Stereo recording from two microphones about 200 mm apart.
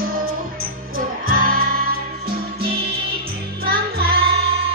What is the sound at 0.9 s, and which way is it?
Music, 45° right (ahead or behind).